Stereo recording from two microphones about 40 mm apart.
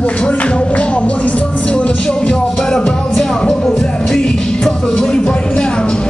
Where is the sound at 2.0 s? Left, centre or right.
Left.